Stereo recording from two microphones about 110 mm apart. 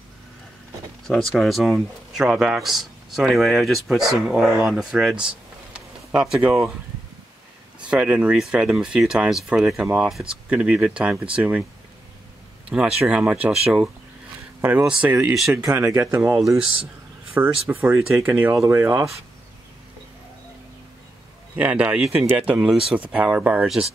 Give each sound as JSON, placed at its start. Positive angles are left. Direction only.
{"t": 1.0, "sound": "speech", "side_deg": 0}
{"t": 7.8, "sound": "speech", "side_deg": -10}
{"t": 12.6, "sound": "speech", "side_deg": -10}
{"t": 16.3, "sound": "speech", "side_deg": -5}
{"t": 17.3, "sound": "speech", "side_deg": -15}
{"t": 21.5, "sound": "speech", "side_deg": -15}